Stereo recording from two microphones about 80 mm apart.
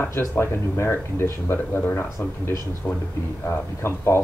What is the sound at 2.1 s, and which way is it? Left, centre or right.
Speech, left.